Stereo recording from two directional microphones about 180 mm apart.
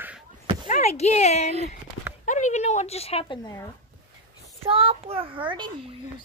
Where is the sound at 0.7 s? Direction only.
40° left (ahead or behind).